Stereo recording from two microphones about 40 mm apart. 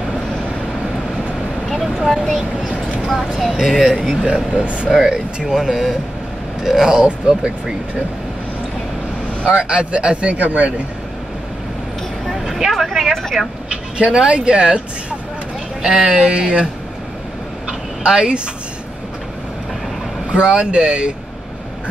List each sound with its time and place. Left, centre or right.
1.7 s vehicle: centre
3.1 s speech: centre
6.9 s speech: right
9.5 s speech: right
12.3 s vehicle: centre
12.8 s speech: centre
13.7 s speech: right
15.8 s speech: centre
18.0 s speech: right
20.2 s speech: right